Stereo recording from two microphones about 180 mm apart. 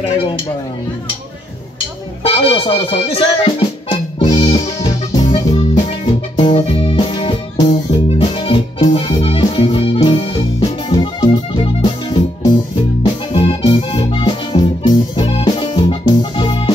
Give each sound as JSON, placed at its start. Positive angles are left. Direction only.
{"t": 2.2, "sound": "music", "side_deg": 30}